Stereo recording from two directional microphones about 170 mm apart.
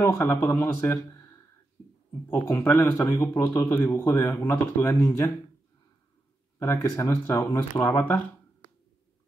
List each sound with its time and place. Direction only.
0.0 s speech: 15° left (ahead or behind)
2.4 s speech: 15° left (ahead or behind)
6.6 s speech: 15° left (ahead or behind)